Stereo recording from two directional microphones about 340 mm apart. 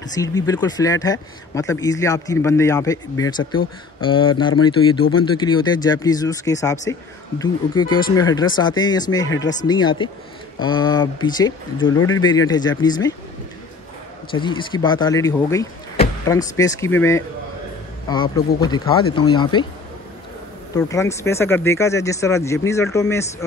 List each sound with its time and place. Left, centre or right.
0.1 s speech: centre
11.9 s speech: left
12.2 s speech: centre
14.3 s speech: centre
20.7 s speech: centre